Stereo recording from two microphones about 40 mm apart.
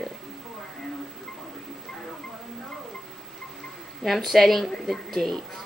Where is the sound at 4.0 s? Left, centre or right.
Centre.